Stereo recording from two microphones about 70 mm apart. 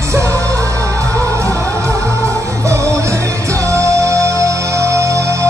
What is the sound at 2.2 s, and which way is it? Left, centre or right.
Music, right.